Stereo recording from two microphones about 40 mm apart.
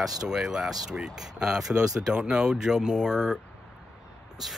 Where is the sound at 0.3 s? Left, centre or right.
Centre.